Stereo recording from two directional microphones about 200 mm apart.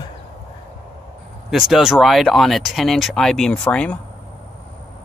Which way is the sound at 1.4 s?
Centre (ahead or behind).